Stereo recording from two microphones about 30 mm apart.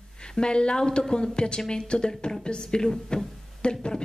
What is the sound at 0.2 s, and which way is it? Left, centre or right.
A woman's voice, left.